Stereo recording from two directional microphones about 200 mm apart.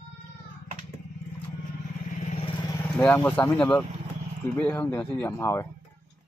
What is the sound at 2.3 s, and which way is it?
Vehicle, 30° left (ahead or behind).